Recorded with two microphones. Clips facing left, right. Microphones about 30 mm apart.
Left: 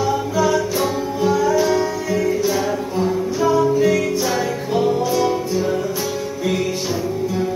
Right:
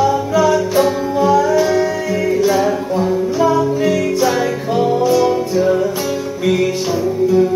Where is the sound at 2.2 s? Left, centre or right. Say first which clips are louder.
Right 5 dB; right.